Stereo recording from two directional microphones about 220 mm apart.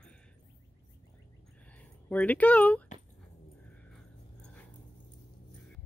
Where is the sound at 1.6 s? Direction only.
5° left (ahead or behind).